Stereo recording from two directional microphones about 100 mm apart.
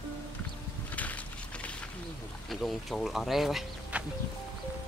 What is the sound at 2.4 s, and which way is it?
Speech, centre (ahead or behind).